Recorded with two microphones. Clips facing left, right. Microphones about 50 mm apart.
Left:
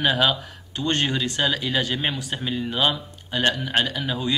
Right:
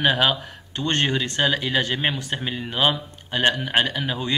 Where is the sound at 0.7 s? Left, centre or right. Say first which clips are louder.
Even; right.